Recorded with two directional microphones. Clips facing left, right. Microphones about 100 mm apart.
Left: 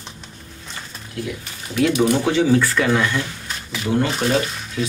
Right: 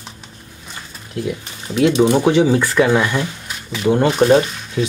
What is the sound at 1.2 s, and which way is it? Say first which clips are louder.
Speech: right 5 dB; 25° right (ahead or behind).